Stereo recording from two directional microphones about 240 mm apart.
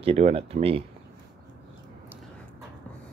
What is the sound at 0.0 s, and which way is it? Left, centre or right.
Speech, right.